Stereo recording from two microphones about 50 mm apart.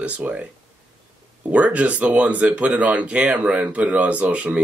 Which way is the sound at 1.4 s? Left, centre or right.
Right.